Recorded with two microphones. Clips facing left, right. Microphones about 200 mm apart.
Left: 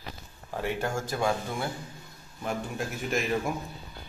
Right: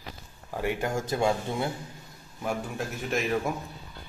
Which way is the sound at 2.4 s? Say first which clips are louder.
Right 1 dB; centre (ahead or behind).